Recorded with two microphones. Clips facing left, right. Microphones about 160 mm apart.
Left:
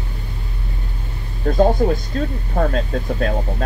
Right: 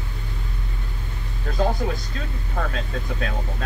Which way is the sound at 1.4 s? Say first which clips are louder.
Left 8 dB; 35° left (ahead or behind).